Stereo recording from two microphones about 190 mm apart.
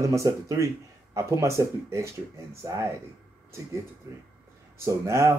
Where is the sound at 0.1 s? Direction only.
15° right (ahead or behind).